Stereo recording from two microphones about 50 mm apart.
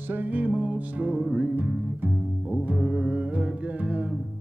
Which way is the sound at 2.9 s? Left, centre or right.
Right.